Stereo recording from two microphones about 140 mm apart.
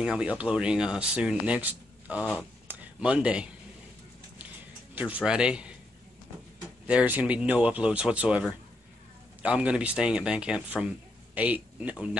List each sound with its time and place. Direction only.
0.0 s speech: 5° right (ahead or behind)
4.9 s speech: 10° right (ahead or behind)
6.9 s speech: 10° right (ahead or behind)